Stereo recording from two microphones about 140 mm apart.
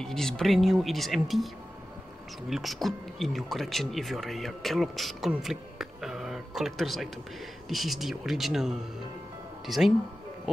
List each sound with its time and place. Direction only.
0.0 s speech: 5° left (ahead or behind)
2.5 s speech: centre (ahead or behind)
5.3 s a sound: 5° right (ahead or behind)
7.7 s speech: centre (ahead or behind)